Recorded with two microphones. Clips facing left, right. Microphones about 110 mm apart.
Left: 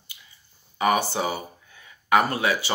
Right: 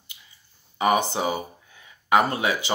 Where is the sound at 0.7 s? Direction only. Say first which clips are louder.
Right 1 dB; 20° right (ahead or behind).